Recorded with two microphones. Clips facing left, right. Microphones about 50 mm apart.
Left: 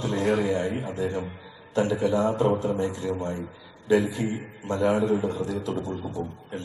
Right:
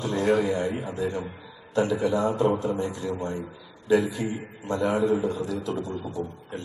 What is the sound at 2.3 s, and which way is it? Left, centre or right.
A man's voice, left.